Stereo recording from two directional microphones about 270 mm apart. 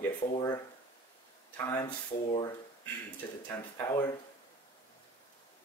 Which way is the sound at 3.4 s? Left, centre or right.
Centre.